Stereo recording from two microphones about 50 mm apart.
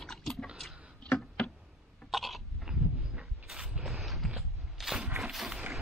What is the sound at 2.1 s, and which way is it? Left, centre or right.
Cough, centre.